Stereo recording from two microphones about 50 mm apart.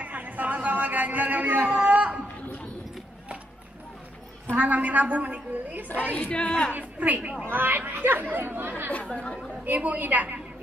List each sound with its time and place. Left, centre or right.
0.0 s a sound: right
1.8 s a sound: right
4.6 s speech: right
6.3 s a woman's voice: left
6.7 s a man's voice: right
7.4 s speech: right
9.1 s a woman's voice: left
9.7 s speech: right